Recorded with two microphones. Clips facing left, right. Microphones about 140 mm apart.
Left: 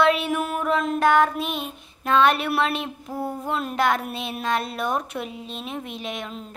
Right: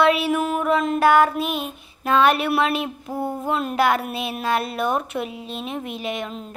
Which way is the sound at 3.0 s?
20° right (ahead or behind).